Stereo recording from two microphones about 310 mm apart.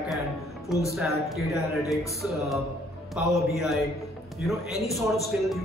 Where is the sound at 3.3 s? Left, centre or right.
Centre.